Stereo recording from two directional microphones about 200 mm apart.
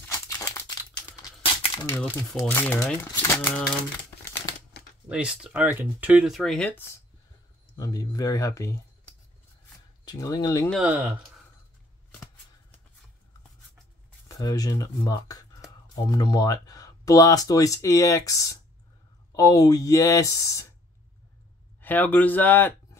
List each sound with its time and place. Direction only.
0.1 s crumpling: 15° left (ahead or behind)
1.2 s a sound: 25° left (ahead or behind)
1.9 s speech: 10° left (ahead or behind)
5.0 s speech: 5° right (ahead or behind); by 8.8 s 15° left (ahead or behind)
10.0 s speech: 20° left (ahead or behind)
14.2 s speech: 20° left (ahead or behind)
21.8 s speech: 10° left (ahead or behind)